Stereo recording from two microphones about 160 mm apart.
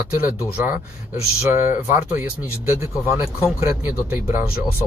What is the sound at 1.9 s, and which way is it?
Speech, 10° right (ahead or behind).